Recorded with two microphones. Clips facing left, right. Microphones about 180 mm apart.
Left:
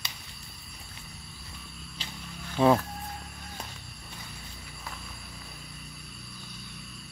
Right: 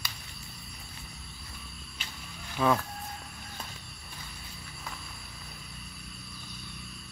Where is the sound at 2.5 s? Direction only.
25° left (ahead or behind).